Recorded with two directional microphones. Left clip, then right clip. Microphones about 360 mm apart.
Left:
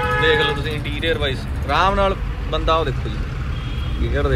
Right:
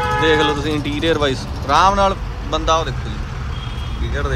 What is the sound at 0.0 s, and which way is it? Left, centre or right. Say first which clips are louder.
Music: right 1 dB; right.